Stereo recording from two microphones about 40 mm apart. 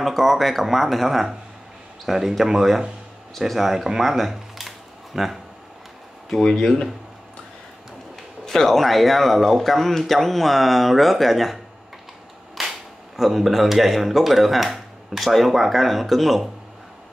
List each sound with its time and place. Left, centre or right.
0.0 s speech: centre
4.0 s camera: centre
8.5 s speech: centre